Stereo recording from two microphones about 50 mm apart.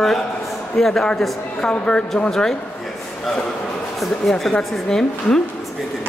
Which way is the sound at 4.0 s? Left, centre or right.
Centre.